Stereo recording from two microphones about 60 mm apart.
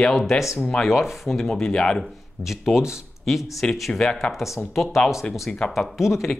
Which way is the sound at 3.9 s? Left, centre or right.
Centre.